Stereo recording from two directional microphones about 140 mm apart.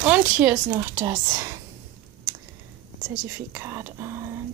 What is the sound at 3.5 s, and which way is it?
Whispering, 15° right (ahead or behind).